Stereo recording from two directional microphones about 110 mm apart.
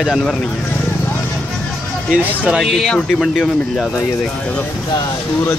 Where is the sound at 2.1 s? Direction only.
10° right (ahead or behind).